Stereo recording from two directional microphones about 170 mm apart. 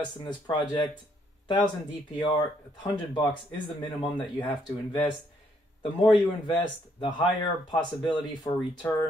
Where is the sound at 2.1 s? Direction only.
25° left (ahead or behind).